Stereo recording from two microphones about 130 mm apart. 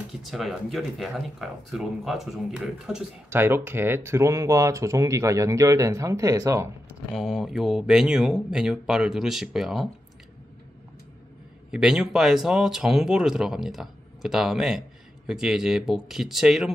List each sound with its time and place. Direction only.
0.2 s speech: centre (ahead or behind)
3.3 s speech: 20° right (ahead or behind)
7.2 s speech: centre (ahead or behind)
11.7 s speech: 5° right (ahead or behind)